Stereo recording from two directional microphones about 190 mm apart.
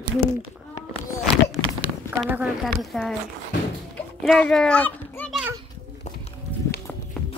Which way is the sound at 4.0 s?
5° left (ahead or behind).